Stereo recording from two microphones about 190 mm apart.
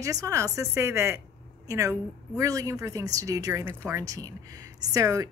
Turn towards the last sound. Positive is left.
turn(degrees=-15)  # may be behind; listen again after turning